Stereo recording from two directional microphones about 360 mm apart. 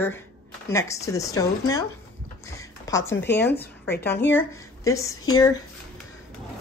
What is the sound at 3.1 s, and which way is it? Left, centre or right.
Speech, left.